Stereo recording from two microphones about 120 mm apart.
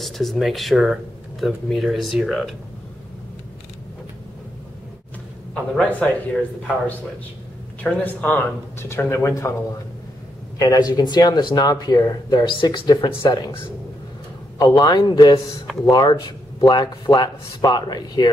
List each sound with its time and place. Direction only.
0.0 s speech: centre (ahead or behind)
5.5 s a man's voice: 10° left (ahead or behind)
7.8 s speech: 15° left (ahead or behind)
10.6 s speech: 30° left (ahead or behind)
14.6 s speech: 30° left (ahead or behind)